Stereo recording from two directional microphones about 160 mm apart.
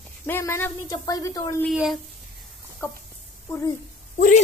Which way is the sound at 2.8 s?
15° left (ahead or behind).